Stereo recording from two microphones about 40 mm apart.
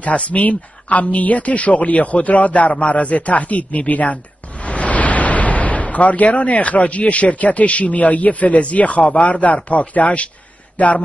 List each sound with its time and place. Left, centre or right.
0.0 s speech: left